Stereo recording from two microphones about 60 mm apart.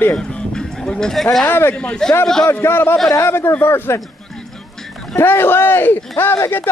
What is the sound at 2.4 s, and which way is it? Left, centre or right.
Speech, left.